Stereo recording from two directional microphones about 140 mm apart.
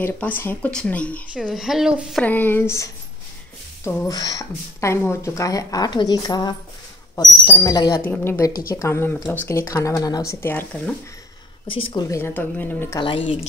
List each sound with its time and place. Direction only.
0.0 s speech: 15° left (ahead or behind)
1.3 s speech: 5° right (ahead or behind)
2.2 s speech: 15° left (ahead or behind)
4.1 s speech: 25° left (ahead or behind)
8.0 s speech: 15° left (ahead or behind)
11.7 s a woman's voice: 35° left (ahead or behind)
12.2 s speech: 15° left (ahead or behind)
13.0 s a woman's voice: 40° left (ahead or behind)